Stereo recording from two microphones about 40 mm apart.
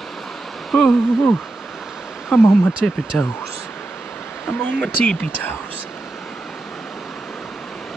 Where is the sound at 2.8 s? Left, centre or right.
Centre.